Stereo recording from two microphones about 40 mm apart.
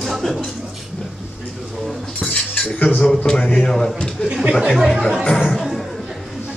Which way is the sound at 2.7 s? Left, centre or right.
Left.